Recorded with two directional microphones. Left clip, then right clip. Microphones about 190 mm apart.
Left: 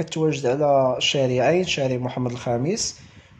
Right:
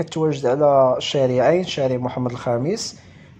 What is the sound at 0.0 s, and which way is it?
Speech, 15° right (ahead or behind).